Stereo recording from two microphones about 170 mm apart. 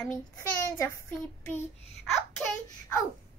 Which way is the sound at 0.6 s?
15° left (ahead or behind).